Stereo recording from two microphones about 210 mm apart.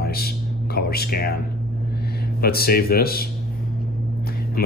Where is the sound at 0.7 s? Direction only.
45° left (ahead or behind).